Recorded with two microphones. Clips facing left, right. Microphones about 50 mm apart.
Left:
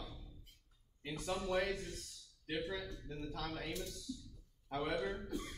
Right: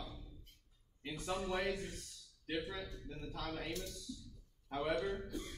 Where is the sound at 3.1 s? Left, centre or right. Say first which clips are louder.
Left 1 dB; centre.